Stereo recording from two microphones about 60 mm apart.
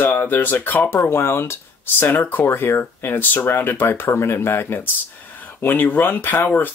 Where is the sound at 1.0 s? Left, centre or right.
Left.